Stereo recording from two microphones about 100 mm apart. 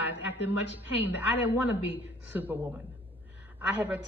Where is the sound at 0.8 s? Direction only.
15° right (ahead or behind).